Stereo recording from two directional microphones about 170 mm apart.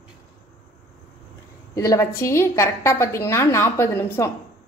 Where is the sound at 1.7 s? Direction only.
15° left (ahead or behind).